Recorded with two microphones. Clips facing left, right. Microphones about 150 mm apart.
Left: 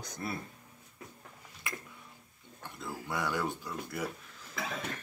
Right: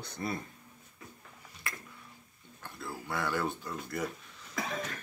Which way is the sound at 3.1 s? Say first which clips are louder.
Right 1 dB; 15° left (ahead or behind).